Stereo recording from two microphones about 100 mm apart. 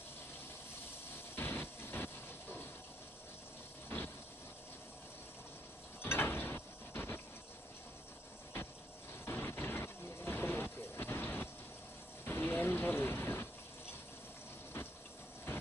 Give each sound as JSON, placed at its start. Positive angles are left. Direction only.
{"t": 1.3, "sound": "vehicle", "side_deg": 20}
{"t": 3.9, "sound": "vehicle", "side_deg": 20}
{"t": 6.0, "sound": "mechanisms", "side_deg": 25}
{"t": 9.2, "sound": "vehicle", "side_deg": 25}